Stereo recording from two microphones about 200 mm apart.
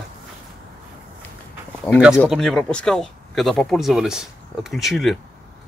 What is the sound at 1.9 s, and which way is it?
Speech, 10° left (ahead or behind).